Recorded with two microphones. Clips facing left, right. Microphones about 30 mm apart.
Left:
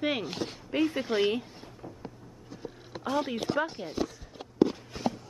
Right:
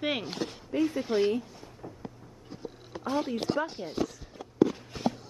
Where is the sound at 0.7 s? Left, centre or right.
Left.